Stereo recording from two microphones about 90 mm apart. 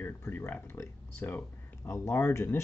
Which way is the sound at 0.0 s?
25° left (ahead or behind).